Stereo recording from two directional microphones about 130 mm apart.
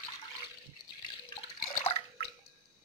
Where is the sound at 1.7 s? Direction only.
45° left (ahead or behind).